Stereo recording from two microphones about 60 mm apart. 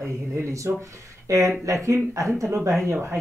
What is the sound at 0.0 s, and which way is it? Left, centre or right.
Speech, right.